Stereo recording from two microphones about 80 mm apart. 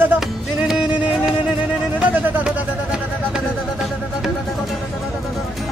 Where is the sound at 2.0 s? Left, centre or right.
Right.